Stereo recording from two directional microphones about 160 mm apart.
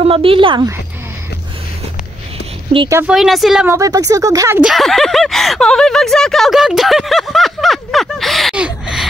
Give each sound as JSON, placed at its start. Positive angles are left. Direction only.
{"t": 0.0, "sound": "speech", "side_deg": -35}
{"t": 3.1, "sound": "speech", "side_deg": 0}
{"t": 3.6, "sound": "speech", "side_deg": -20}
{"t": 4.6, "sound": "speech", "side_deg": 0}